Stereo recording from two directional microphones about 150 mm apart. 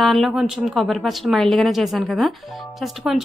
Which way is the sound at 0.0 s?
Centre (ahead or behind).